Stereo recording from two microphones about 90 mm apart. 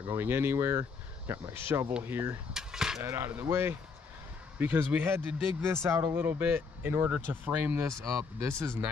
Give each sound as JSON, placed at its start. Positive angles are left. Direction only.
{"t": 0.0, "sound": "speech", "side_deg": -25}
{"t": 2.5, "sound": "a sound", "side_deg": -5}
{"t": 3.0, "sound": "speech", "side_deg": -25}
{"t": 8.0, "sound": "speech", "side_deg": 0}
{"t": 8.4, "sound": "speech", "side_deg": -30}